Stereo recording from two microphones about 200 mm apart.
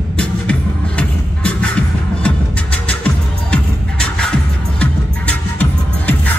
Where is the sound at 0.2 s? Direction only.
5° left (ahead or behind).